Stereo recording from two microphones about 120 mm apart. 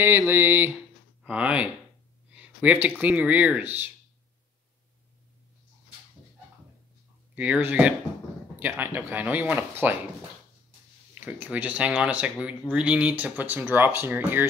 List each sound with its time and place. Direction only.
0.3 s speech: 15° right (ahead or behind)
2.3 s a sound: 10° right (ahead or behind)
3.0 s speech: 15° right (ahead or behind)
7.3 s speech: 10° right (ahead or behind)
11.1 s speech: 15° right (ahead or behind)